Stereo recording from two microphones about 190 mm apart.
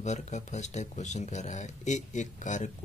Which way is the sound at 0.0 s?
35° left (ahead or behind).